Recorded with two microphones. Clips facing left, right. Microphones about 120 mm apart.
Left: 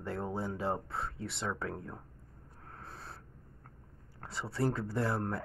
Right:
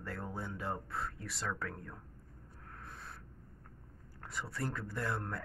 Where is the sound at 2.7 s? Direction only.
30° left (ahead or behind).